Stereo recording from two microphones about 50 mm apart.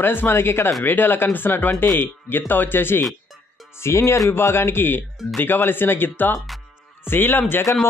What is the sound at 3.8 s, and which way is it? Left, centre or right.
Speech, left.